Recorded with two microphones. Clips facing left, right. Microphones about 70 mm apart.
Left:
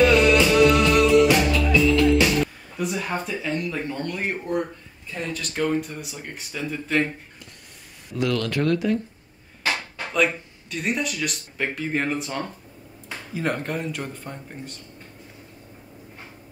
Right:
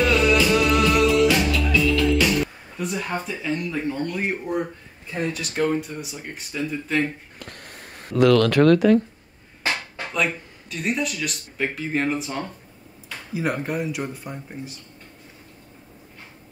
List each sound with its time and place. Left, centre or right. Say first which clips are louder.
0.0 s music: left 2 dB; centre
1.3 s music: left 1 dB; left
2.8 s speech: left 1 dB; centre
8.1 s speech: right 8 dB; right
10.1 s speech: left 3 dB; centre